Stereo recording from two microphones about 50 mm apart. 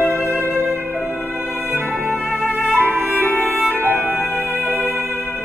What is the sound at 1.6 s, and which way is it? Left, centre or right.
Music, right.